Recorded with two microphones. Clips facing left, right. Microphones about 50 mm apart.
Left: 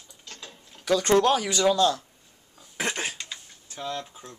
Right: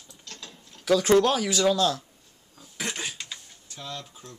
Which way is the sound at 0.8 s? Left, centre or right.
Centre.